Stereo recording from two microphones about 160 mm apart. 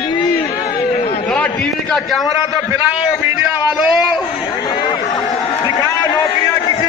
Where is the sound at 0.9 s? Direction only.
35° left (ahead or behind).